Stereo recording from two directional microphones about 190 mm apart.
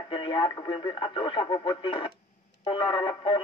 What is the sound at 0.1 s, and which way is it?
Speech, 25° left (ahead or behind).